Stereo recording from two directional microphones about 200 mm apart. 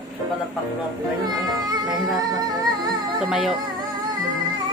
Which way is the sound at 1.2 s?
20° right (ahead or behind).